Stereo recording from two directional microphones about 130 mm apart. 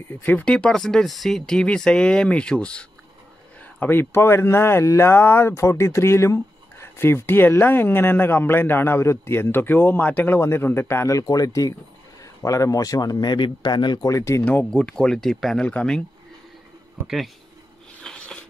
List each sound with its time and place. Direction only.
0.1 s speech: 15° left (ahead or behind)
14.4 s speech: 15° left (ahead or behind)
18.0 s a sound: 5° left (ahead or behind)